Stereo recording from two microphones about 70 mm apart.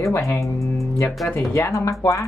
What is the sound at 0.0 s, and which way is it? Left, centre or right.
Speech, left.